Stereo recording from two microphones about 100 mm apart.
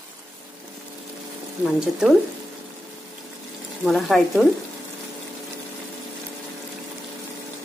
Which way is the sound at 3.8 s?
Centre (ahead or behind).